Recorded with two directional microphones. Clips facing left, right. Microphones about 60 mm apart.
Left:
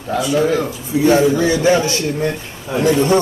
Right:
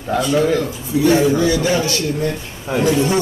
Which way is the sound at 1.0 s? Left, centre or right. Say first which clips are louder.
Left 1 dB; left.